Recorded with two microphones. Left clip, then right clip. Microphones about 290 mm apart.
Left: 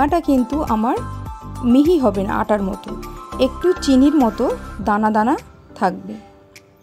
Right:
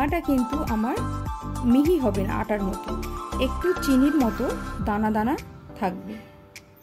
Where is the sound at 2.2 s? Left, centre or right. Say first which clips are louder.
Left 8 dB; left.